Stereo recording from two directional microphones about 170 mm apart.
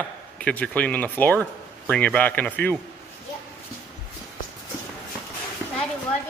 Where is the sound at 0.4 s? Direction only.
10° left (ahead or behind).